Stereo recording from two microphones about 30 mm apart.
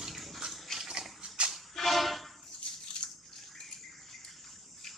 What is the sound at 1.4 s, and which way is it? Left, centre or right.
Music, right.